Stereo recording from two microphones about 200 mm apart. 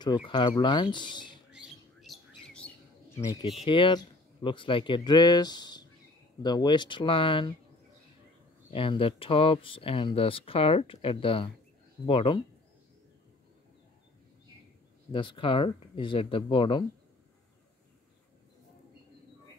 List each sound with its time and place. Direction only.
0.0 s speech: 20° left (ahead or behind)
1.5 s bird: 5° right (ahead or behind)
3.2 s speech: 15° left (ahead or behind)
8.6 s speech: 25° left (ahead or behind)
15.1 s speech: 25° left (ahead or behind)